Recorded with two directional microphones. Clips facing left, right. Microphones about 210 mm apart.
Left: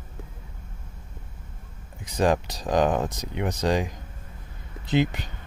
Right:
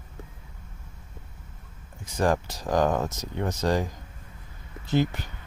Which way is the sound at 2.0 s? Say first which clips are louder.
Left 2 dB; 15° left (ahead or behind).